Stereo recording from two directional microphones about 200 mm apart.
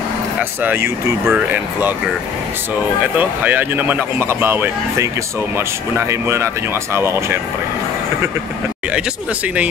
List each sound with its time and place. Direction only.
0.4 s speech: 10° right (ahead or behind)
3.2 s speech: 10° right (ahead or behind)